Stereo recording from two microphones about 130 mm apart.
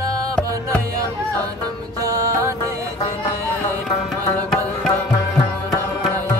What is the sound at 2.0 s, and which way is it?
Music, 25° right (ahead or behind).